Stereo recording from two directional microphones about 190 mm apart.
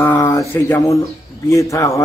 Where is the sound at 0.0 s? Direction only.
15° left (ahead or behind).